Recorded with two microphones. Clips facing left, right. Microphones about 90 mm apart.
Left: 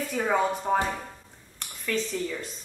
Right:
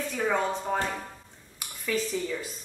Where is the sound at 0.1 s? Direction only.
5° left (ahead or behind).